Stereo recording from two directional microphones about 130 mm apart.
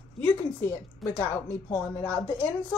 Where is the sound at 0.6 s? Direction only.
20° left (ahead or behind).